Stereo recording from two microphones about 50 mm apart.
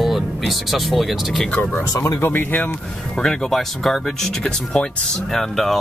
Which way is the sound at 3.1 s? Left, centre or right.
Centre.